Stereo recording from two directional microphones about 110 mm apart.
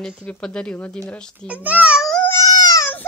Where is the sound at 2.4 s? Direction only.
35° left (ahead or behind).